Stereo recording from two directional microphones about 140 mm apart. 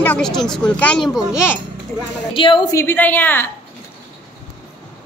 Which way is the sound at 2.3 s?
40° left (ahead or behind).